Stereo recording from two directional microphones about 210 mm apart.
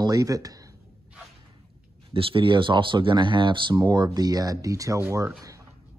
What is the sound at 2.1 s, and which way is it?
Speech, 25° right (ahead or behind).